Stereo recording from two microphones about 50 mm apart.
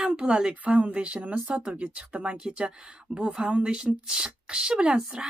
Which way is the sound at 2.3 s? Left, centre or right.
Centre.